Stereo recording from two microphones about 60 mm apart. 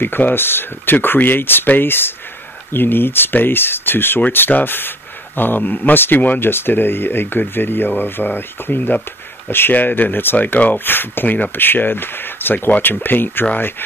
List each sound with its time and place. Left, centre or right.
0.0 s speech: left